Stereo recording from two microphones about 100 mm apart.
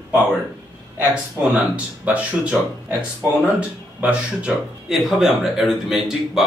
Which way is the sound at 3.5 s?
10° right (ahead or behind).